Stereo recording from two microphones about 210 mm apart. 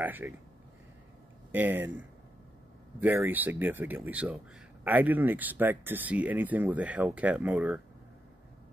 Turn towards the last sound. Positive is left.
turn(degrees=-5)  # may be behind; listen again after turning